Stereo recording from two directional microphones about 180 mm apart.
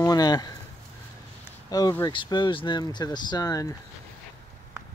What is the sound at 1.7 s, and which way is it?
Speech, 20° left (ahead or behind).